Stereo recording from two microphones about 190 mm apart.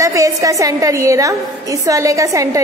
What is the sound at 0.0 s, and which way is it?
A woman's voice, 15° right (ahead or behind).